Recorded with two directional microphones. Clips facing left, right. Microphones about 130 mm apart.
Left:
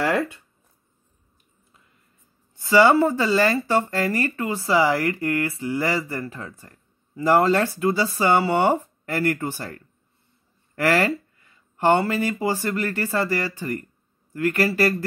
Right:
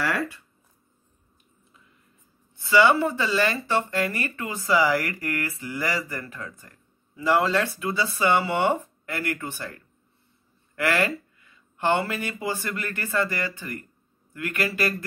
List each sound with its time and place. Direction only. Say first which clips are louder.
0.0 s speech: left 5 dB; 25° left (ahead or behind)
2.7 s speech: left 3 dB; 35° left (ahead or behind)
7.2 s speech: left 4 dB; 45° left (ahead or behind)
10.8 s speech: left 4 dB; 35° left (ahead or behind)